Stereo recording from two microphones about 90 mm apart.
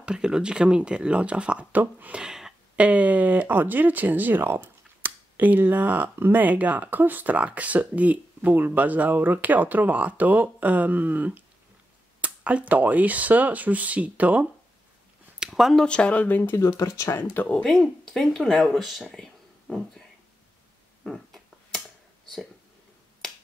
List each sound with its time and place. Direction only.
0.0 s speech: 10° right (ahead or behind)
15.3 s a sound: 5° right (ahead or behind)
15.8 s speech: 10° left (ahead or behind)
16.5 s speech: 30° left (ahead or behind)
17.5 s speech: 5° left (ahead or behind)
21.0 s a sound: centre (ahead or behind)